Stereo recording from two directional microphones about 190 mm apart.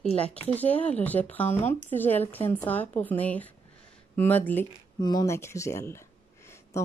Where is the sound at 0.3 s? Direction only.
10° left (ahead or behind).